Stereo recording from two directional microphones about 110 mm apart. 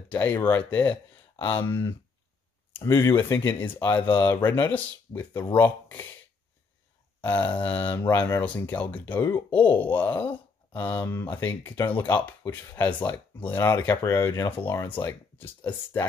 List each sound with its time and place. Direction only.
0.1 s speech: 15° left (ahead or behind)
1.3 s a sound: 50° left (ahead or behind)
1.6 s speech: 20° left (ahead or behind)
7.2 s a sound: 15° left (ahead or behind)
7.6 s speech: 15° left (ahead or behind)
15.0 s speech: 15° left (ahead or behind)